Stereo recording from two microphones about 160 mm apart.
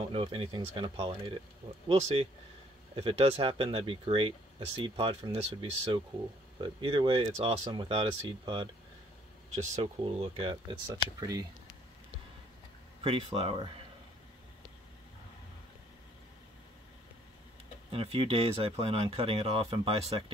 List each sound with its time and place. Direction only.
0.0 s speech: 35° right (ahead or behind)
10.0 s speech: 35° right (ahead or behind)
11.1 s speech: 20° right (ahead or behind)
13.0 s speech: 35° right (ahead or behind)
17.9 s speech: 35° right (ahead or behind)